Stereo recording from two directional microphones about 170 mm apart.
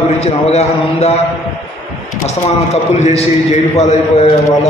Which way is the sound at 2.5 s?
40° left (ahead or behind).